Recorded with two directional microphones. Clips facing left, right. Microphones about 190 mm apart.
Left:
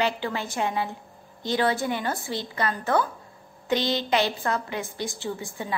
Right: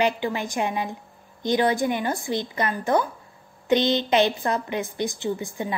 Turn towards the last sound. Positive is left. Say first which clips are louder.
# right 5 dB
turn(degrees=-15)  # may be behind; listen again after turning